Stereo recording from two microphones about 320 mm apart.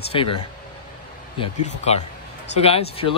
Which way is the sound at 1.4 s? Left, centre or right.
Centre.